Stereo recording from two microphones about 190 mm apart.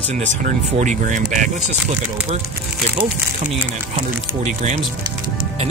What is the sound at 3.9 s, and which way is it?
Speech, 35° right (ahead or behind).